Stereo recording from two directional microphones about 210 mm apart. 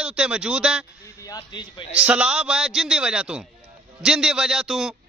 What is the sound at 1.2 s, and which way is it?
Speech, 20° left (ahead or behind).